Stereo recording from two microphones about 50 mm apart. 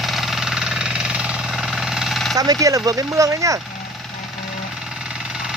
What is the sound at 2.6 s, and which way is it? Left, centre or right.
Speech, right.